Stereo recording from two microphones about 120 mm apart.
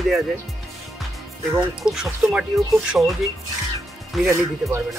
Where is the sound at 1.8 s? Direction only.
5° right (ahead or behind).